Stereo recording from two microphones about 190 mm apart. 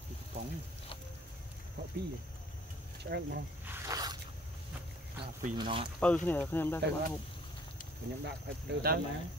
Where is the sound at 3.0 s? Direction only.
60° right (ahead or behind).